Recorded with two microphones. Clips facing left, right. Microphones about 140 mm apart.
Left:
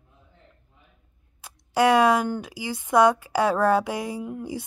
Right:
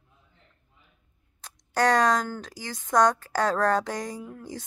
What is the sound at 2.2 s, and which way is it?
Speech, 15° left (ahead or behind).